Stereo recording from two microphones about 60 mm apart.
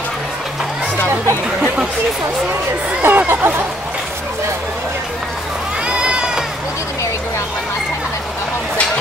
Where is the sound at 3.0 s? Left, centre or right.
Right.